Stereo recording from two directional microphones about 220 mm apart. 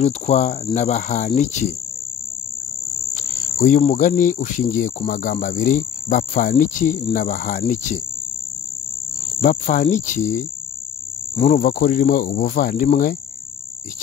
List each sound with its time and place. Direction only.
0.0 s cricket: 30° left (ahead or behind)
3.5 s cricket: 30° left (ahead or behind)
9.4 s cricket: 35° left (ahead or behind)